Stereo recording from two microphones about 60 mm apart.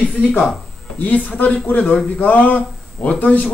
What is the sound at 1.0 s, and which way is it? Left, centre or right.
A man's voice, left.